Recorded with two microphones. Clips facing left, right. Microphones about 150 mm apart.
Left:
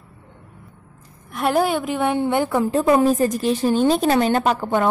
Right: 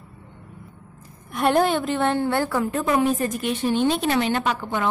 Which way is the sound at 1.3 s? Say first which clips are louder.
Even; 5° left (ahead or behind).